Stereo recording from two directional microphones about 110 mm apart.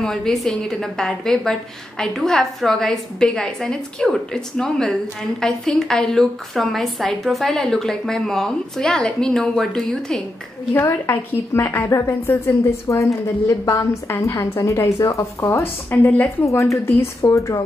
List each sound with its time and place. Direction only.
0.0 s a woman's voice: 5° left (ahead or behind)
10.7 s a woman's voice: 20° left (ahead or behind)
15.9 s a woman's voice: 15° left (ahead or behind)
16.4 s a woman's voice: 30° left (ahead or behind)